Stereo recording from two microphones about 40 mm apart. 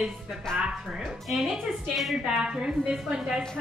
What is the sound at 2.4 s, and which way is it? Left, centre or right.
Speech, right.